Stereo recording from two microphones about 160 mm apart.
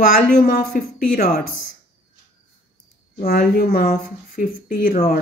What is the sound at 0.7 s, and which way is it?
Speech, 65° left (ahead or behind).